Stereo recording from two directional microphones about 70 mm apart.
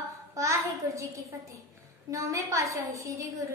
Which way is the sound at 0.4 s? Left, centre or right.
Right.